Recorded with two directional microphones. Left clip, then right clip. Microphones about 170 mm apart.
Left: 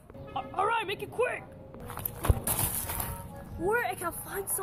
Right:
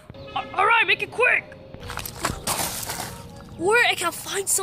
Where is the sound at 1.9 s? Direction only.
15° right (ahead or behind).